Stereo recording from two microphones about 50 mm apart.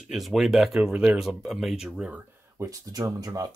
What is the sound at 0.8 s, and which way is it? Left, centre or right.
Speech, right.